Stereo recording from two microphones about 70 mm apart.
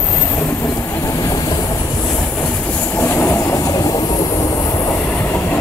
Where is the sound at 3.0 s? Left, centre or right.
Left.